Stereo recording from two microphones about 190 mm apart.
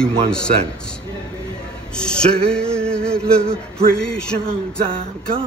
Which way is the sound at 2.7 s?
5° left (ahead or behind).